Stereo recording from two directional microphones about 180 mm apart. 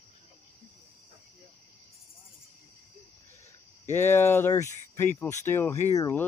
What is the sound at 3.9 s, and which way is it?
Speech, 15° left (ahead or behind).